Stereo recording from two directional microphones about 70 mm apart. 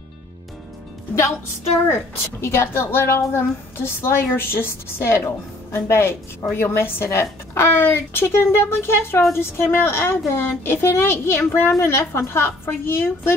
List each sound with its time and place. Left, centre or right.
1.9 s a woman's voice: left